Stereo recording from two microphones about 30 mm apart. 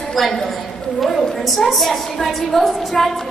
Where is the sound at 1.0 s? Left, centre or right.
Centre.